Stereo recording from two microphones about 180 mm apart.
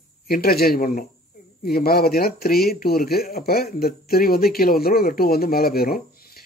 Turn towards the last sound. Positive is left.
turn(degrees=55)  # may be behind; listen again after turning